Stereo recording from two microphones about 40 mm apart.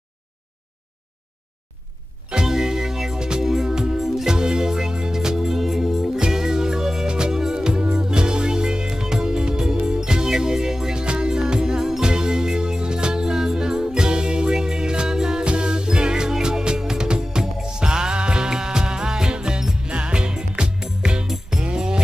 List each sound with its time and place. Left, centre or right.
2.2 s music: centre